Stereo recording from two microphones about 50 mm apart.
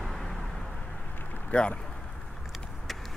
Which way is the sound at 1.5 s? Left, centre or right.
Centre.